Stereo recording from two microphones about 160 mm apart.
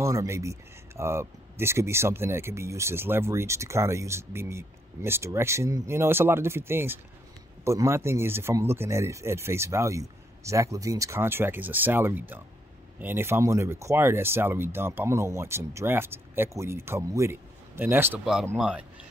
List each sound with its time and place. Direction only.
0.0 s speech: 20° right (ahead or behind)
18.2 s speech: centre (ahead or behind)